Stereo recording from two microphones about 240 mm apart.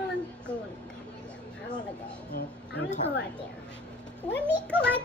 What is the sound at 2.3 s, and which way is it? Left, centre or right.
Speech, left.